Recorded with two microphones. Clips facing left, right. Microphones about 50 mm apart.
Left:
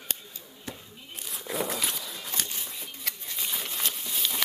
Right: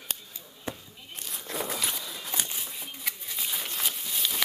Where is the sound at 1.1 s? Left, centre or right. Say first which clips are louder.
Left 2 dB; centre.